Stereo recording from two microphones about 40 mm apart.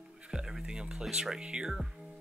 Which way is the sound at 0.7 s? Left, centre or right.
Centre.